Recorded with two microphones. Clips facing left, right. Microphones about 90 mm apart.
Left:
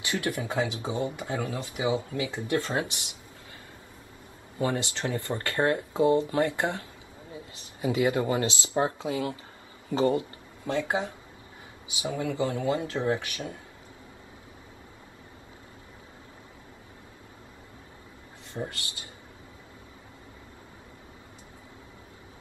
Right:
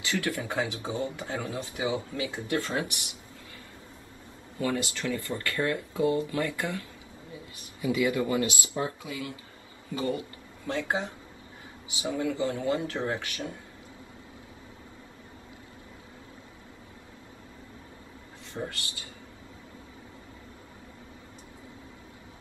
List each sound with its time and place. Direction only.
0.0 s speech: 20° left (ahead or behind)
1.5 s speech: 25° right (ahead or behind)
1.8 s speech: 20° left (ahead or behind)
4.6 s speech: 25° left (ahead or behind)
7.9 s speech: 30° left (ahead or behind)